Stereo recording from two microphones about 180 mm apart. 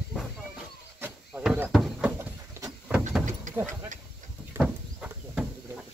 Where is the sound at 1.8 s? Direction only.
5° right (ahead or behind).